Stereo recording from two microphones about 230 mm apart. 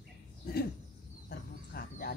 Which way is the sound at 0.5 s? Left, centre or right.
Left.